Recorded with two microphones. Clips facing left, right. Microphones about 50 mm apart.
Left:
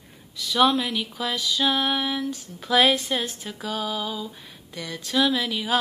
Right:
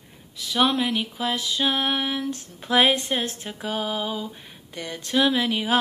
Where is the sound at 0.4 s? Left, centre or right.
Right.